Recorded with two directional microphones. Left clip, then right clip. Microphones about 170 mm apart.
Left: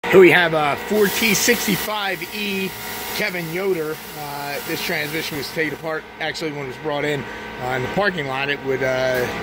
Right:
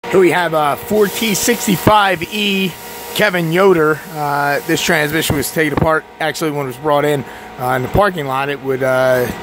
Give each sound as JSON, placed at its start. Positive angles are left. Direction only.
{"t": 0.1, "sound": "speech", "side_deg": -10}
{"t": 1.9, "sound": "speech", "side_deg": -40}